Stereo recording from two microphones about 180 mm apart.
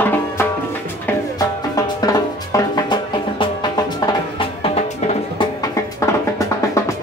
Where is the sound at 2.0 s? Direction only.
20° left (ahead or behind); by 5.5 s 35° left (ahead or behind).